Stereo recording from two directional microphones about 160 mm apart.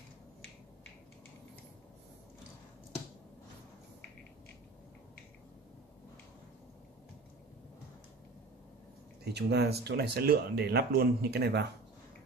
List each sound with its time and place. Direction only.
9.2 s speech: 90° right